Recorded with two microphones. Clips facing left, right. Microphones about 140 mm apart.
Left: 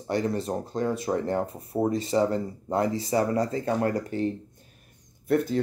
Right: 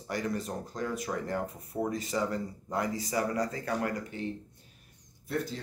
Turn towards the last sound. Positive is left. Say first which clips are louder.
# left 10 dB
turn(degrees=60)  # may be behind; listen again after turning